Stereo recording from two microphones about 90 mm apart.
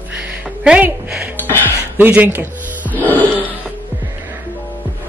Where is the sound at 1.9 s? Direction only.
20° right (ahead or behind).